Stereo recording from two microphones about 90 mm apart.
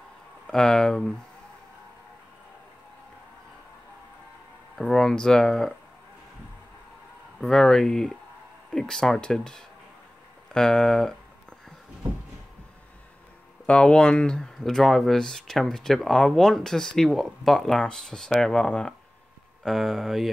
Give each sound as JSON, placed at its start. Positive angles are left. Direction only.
{"t": 0.5, "sound": "speech", "side_deg": 5}
{"t": 4.7, "sound": "speech", "side_deg": 5}
{"t": 7.3, "sound": "speech", "side_deg": 5}
{"t": 13.7, "sound": "speech", "side_deg": 10}